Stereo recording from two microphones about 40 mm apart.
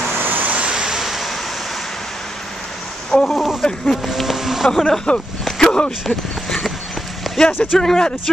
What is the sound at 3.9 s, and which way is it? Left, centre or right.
Speech, centre.